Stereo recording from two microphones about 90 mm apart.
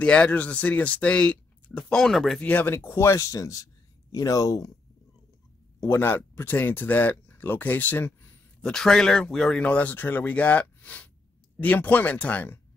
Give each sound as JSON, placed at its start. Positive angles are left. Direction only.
{"t": 0.0, "sound": "speech", "side_deg": 15}
{"t": 2.4, "sound": "speech", "side_deg": 20}
{"t": 5.8, "sound": "speech", "side_deg": 25}
{"t": 8.5, "sound": "speech", "side_deg": 5}